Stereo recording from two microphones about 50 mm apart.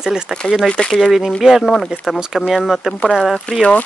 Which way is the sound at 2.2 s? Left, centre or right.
Centre.